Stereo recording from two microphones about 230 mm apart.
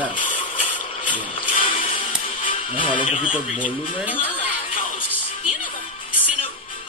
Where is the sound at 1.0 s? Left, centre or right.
Left.